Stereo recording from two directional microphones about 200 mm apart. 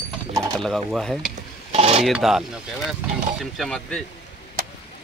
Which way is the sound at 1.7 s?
30° right (ahead or behind).